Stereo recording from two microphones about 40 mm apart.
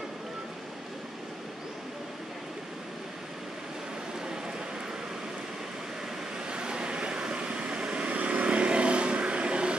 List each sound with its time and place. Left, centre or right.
6.5 s vehicle: right